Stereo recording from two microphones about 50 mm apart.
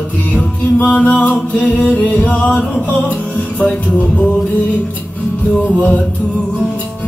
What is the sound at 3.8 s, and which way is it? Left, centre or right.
Mantra, left.